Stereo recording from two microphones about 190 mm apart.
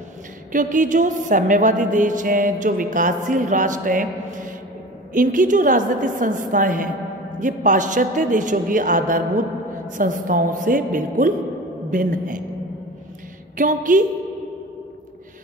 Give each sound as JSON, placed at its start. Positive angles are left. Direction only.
{"t": 0.5, "sound": "speech", "side_deg": -45}
{"t": 13.6, "sound": "speech", "side_deg": -45}